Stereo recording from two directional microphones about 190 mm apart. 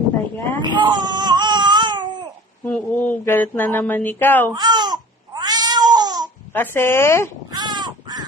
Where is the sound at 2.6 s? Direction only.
10° left (ahead or behind).